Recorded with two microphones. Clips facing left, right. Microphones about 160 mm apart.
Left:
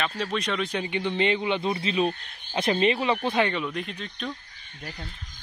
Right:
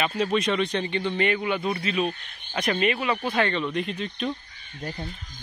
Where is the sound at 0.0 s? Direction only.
5° right (ahead or behind); by 3.6 s 15° left (ahead or behind).